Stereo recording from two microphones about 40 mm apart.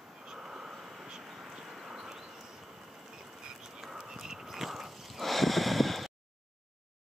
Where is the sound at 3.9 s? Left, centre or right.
Centre.